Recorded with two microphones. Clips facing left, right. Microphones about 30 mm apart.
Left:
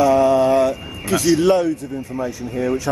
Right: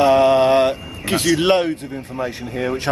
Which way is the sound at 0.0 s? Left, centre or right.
Right.